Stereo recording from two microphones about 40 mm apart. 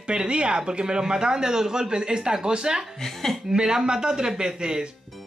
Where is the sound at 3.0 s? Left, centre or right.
Centre.